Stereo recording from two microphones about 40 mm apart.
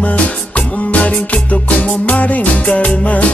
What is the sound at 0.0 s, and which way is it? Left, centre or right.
Music, left.